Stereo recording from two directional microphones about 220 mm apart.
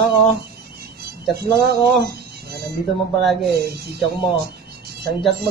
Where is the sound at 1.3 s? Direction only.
45° right (ahead or behind).